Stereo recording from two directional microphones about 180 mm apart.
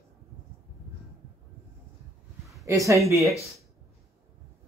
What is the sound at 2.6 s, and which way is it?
Speech, 15° right (ahead or behind).